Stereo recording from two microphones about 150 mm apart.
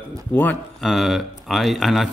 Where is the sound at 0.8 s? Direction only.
Centre (ahead or behind).